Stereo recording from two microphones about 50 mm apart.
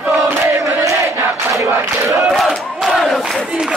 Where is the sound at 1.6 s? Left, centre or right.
Right.